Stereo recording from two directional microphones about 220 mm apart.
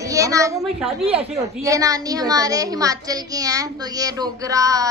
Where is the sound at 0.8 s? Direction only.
25° right (ahead or behind).